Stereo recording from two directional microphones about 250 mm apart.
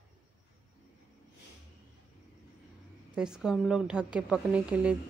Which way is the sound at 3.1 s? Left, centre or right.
Centre.